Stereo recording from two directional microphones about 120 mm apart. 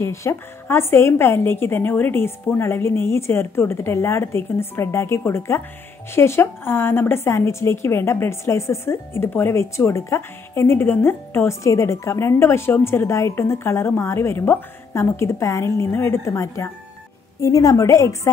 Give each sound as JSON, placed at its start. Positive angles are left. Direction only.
{"t": 0.0, "sound": "a woman's voice", "side_deg": 25}